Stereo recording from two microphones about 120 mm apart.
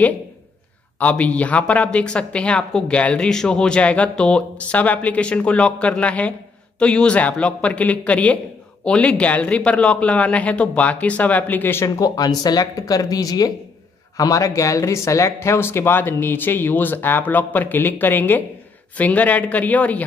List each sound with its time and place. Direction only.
0.9 s speech: 10° left (ahead or behind)
12.0 s speech: 35° left (ahead or behind); by 20.1 s 10° left (ahead or behind)